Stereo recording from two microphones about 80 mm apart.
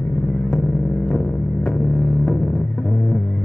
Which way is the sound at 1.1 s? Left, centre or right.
Centre.